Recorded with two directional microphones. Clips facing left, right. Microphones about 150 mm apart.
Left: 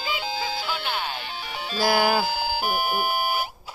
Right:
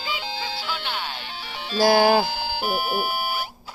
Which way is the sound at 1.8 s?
35° right (ahead or behind).